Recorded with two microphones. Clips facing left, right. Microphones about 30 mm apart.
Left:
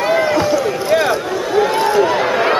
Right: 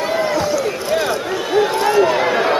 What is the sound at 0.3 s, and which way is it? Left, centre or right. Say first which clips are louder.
Run: left 3 dB; left.